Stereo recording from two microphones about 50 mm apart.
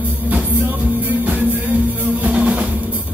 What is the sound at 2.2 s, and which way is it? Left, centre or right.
Music, right.